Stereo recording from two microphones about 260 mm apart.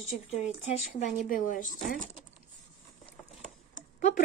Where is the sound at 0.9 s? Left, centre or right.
Left.